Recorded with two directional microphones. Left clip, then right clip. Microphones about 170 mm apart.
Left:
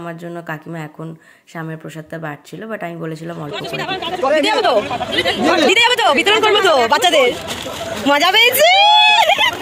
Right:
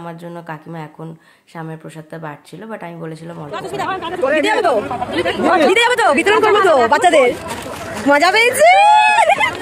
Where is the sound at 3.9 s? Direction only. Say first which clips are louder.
Even; 70° right (ahead or behind).